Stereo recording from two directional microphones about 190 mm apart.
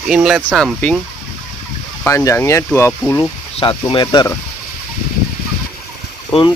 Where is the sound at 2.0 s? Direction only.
15° left (ahead or behind).